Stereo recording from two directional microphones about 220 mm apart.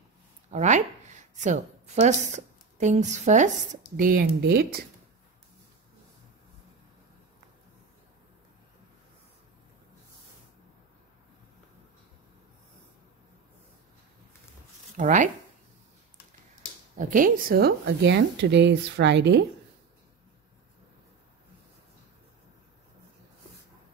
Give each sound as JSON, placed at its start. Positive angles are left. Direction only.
{"t": 0.5, "sound": "a woman's voice", "side_deg": -35}
{"t": 15.0, "sound": "speech", "side_deg": -35}
{"t": 16.9, "sound": "a woman's voice", "side_deg": -35}